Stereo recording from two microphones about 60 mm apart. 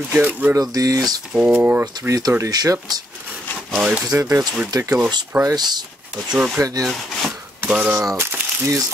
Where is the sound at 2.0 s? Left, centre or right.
Right.